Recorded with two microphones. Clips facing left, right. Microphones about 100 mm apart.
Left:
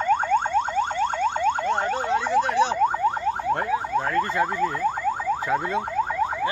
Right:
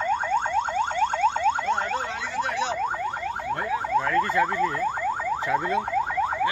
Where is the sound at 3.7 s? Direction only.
25° left (ahead or behind).